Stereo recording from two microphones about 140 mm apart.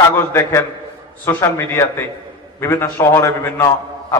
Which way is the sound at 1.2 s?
20° left (ahead or behind).